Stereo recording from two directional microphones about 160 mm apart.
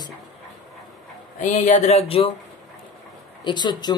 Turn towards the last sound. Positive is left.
turn(degrees=30)  # may be behind; listen again after turning